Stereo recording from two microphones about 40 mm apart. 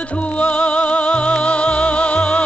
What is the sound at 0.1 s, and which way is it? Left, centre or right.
Music, left.